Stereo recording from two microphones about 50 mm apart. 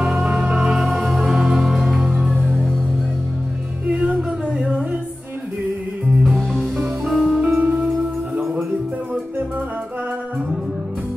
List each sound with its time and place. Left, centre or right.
0.0 s music: centre
3.8 s music: right
4.2 s music: centre
6.2 s music: centre
7.4 s music: right